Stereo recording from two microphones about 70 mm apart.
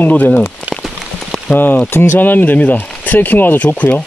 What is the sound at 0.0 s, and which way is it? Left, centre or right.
Speech, centre.